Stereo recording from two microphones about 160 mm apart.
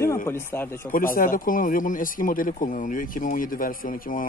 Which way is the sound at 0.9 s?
60° left (ahead or behind).